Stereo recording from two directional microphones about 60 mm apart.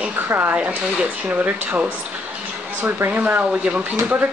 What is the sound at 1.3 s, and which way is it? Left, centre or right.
Speech, right.